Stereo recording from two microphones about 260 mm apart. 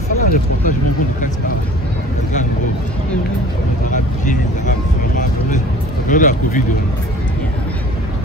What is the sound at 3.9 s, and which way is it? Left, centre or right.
Vehicle, left.